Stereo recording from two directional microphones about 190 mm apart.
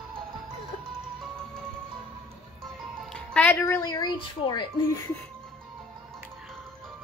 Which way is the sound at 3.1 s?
10° left (ahead or behind).